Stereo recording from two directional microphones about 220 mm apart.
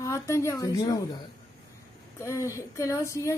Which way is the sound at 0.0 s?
15° left (ahead or behind).